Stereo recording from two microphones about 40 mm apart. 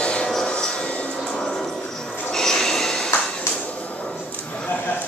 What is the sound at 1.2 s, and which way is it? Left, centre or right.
Music, centre.